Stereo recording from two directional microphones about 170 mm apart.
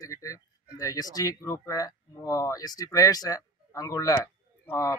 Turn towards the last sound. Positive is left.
turn(degrees=20)  # may be behind; listen again after turning